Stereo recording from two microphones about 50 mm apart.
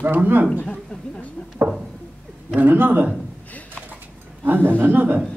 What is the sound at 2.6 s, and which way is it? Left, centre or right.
Speech, right.